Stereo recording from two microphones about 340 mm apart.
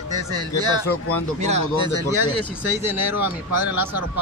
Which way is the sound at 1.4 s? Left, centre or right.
Centre.